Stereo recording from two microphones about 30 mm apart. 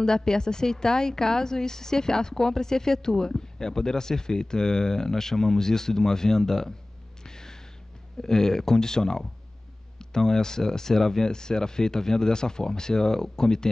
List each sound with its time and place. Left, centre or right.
0.0 s a woman's voice: left
7.2 s a sound: left
8.2 s a woman's voice: centre